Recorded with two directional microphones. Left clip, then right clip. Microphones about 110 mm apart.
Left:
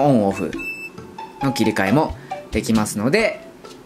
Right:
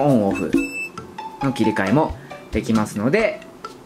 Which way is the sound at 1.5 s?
25° left (ahead or behind).